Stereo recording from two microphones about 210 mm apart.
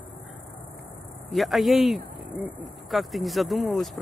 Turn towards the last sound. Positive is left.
turn(degrees=0)  # may be behind; listen again after turning